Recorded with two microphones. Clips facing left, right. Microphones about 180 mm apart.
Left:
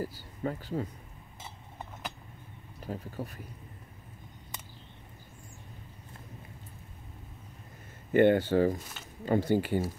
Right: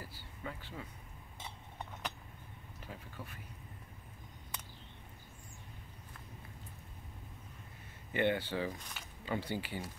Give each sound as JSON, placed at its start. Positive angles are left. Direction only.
{"t": 0.0, "sound": "speech", "side_deg": 40}
{"t": 1.4, "sound": "a sound", "side_deg": 5}
{"t": 2.8, "sound": "speech", "side_deg": 40}
{"t": 8.1, "sound": "speech", "side_deg": 45}